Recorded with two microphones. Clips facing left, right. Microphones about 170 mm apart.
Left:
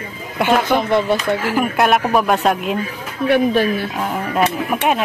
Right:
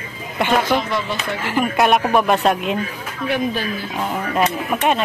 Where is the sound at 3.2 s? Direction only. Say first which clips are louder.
Left 7 dB; 65° left (ahead or behind).